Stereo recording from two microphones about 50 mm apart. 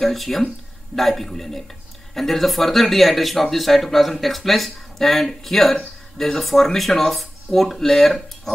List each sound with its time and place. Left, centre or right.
0.0 s speech: centre